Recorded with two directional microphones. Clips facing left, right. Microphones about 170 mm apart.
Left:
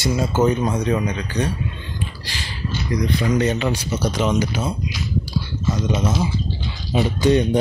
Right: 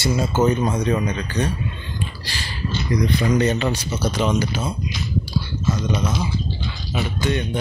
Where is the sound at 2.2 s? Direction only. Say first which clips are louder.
Even; 15° left (ahead or behind).